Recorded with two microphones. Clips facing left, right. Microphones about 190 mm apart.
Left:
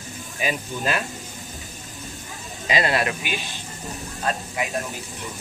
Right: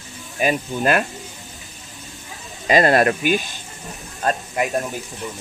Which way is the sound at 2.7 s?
50° right (ahead or behind).